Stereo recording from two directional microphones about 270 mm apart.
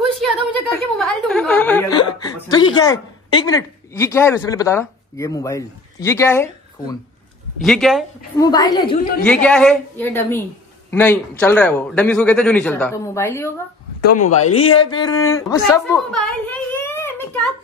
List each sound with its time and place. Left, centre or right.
0.3 s a sound: centre
7.6 s a man's voice: centre
8.4 s a woman's voice: centre
14.0 s speech: left
14.4 s a woman's voice: left